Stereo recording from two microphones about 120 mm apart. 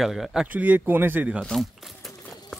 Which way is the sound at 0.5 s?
15° right (ahead or behind).